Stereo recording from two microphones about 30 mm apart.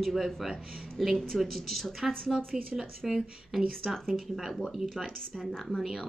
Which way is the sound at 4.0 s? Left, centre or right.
Centre.